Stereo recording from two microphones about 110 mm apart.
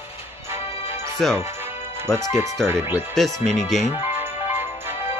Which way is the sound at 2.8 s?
20° right (ahead or behind).